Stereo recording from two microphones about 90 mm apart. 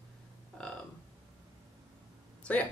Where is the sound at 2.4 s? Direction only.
15° left (ahead or behind).